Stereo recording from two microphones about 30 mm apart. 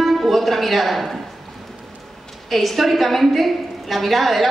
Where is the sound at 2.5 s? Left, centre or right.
Centre.